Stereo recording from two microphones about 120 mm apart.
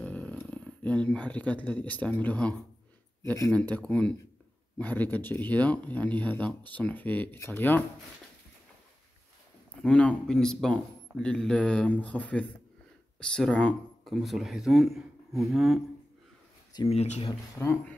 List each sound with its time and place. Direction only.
0.0 s speech: 10° left (ahead or behind)
3.7 s speech: 10° left (ahead or behind)
9.8 s speech: 10° left (ahead or behind)
14.0 s a man's voice: centre (ahead or behind)
16.9 s speech: 60° left (ahead or behind)
17.6 s speech: 20° left (ahead or behind)